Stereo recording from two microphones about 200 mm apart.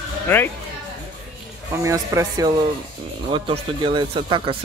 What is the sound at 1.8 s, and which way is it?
A man's voice, 15° right (ahead or behind).